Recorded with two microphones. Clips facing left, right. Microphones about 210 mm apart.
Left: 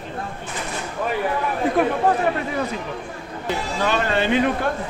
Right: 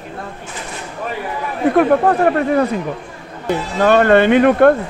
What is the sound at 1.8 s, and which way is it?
Speech, 60° right (ahead or behind).